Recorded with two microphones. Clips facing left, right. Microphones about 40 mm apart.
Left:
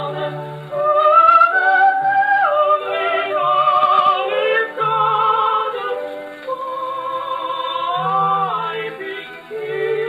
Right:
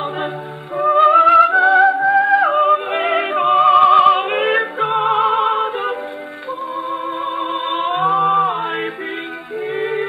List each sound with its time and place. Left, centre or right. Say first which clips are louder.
0.7 s music: right 1 dB; centre
2.5 s music: right 1 dB; centre
3.8 s opera: right 4 dB; centre
4.3 s music: even; right
4.6 s music: even; centre
7.1 s music: right 1 dB; centre
8.4 s mantra: right 3 dB; centre
9.8 s music: left 2 dB; centre